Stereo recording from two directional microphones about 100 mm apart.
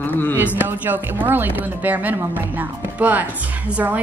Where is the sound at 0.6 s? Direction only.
20° right (ahead or behind).